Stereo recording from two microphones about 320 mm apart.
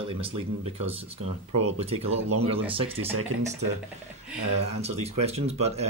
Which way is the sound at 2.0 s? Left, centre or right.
Right.